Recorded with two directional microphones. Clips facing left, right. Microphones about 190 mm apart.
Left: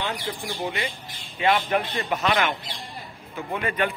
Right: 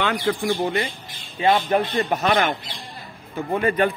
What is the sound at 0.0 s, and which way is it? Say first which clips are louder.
Speech: right 8 dB; 75° right (ahead or behind).